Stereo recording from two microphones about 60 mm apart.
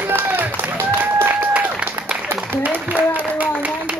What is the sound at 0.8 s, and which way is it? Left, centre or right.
Applause, right.